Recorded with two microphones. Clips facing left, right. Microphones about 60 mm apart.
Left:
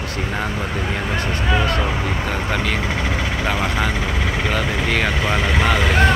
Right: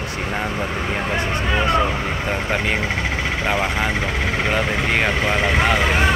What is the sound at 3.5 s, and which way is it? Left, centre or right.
Speech, centre.